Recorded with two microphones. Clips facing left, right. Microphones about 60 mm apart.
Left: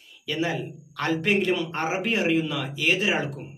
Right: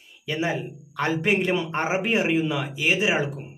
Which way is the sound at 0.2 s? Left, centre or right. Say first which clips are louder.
Right 1 dB; centre.